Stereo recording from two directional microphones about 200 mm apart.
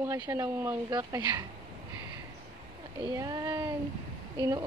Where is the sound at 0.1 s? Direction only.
15° right (ahead or behind).